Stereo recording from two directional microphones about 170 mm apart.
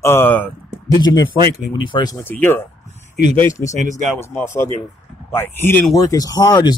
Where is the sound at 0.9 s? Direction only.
25° left (ahead or behind).